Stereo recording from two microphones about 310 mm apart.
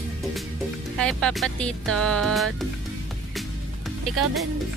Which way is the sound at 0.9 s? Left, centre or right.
Centre.